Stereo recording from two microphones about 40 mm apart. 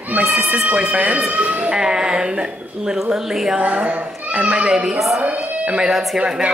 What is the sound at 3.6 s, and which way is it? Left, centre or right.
Speech, right.